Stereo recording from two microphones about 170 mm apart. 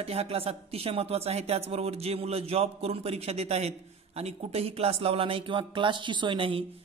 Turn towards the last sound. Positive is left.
turn(degrees=-35)  # may be behind; listen again after turning